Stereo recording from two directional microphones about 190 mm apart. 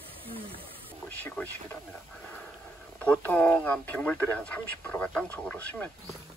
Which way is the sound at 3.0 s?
5° left (ahead or behind).